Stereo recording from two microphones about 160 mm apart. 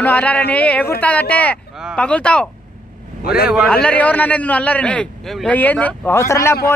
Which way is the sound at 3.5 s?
Centre (ahead or behind).